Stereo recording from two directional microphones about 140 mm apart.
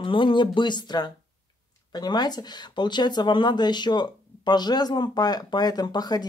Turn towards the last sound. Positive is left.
turn(degrees=30)  # may be behind; listen again after turning